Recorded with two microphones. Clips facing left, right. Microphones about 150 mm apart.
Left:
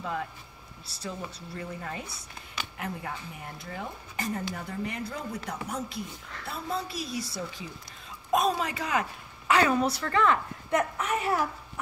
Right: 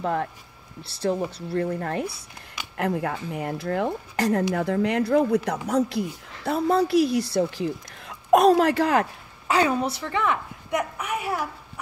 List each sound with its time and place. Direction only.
0.0 s speech: 55° right (ahead or behind)
1.5 s speech: 60° right (ahead or behind)
2.8 s speech: 75° right (ahead or behind)
6.4 s speech: 85° right; by 9.0 s 65° right (ahead or behind)
9.5 s a woman's voice: 20° right (ahead or behind)